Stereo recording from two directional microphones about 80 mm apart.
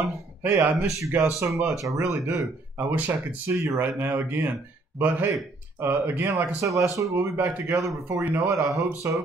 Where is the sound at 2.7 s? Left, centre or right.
Right.